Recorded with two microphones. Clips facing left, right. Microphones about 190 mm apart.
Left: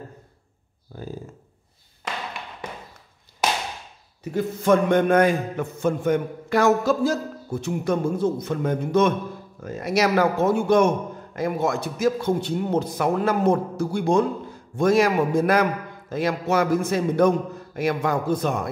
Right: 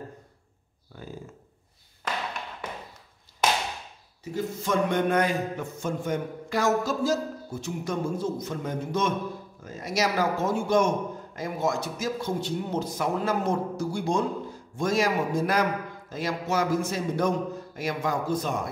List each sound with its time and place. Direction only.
0.9 s speech: 35° left (ahead or behind)
4.2 s a man's voice: 60° left (ahead or behind)